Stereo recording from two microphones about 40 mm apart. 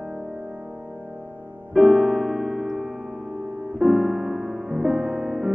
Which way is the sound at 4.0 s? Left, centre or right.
Centre.